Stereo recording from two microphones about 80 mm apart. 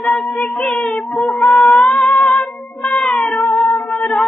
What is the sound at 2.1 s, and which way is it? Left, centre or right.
Child singing, centre.